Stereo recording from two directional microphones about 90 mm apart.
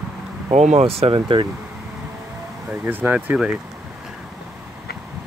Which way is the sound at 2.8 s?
20° right (ahead or behind).